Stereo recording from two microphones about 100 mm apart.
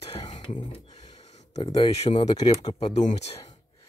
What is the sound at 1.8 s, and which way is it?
Speech, 90° left.